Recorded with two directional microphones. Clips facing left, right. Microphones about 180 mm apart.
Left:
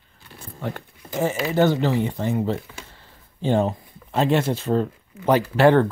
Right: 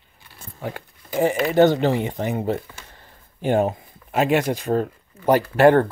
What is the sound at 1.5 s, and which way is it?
Speech, 20° right (ahead or behind).